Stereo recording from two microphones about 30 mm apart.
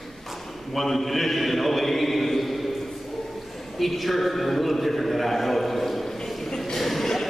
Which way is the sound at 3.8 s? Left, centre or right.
Centre.